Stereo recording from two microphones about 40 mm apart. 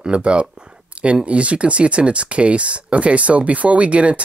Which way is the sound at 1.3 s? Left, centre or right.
Right.